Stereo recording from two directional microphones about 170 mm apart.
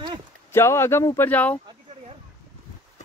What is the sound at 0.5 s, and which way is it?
Speech, 15° left (ahead or behind).